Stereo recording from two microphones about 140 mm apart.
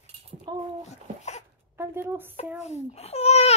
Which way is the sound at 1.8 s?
15° right (ahead or behind).